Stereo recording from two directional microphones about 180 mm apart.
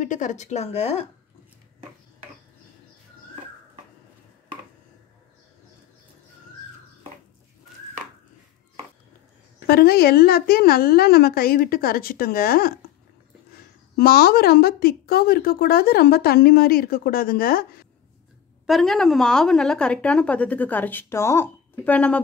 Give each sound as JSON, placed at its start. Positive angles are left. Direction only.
{"t": 0.0, "sound": "speech", "side_deg": 45}
{"t": 9.7, "sound": "a woman's voice", "side_deg": 60}
{"t": 18.7, "sound": "a woman's voice", "side_deg": 0}